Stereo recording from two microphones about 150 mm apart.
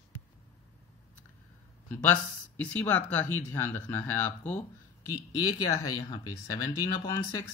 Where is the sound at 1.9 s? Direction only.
10° left (ahead or behind).